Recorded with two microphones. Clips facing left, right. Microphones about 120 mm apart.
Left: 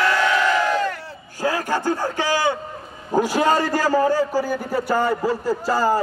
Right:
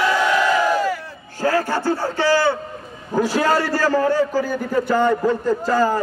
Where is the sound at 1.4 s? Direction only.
15° left (ahead or behind).